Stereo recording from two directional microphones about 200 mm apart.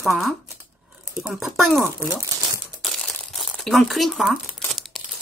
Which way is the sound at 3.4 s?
Centre (ahead or behind).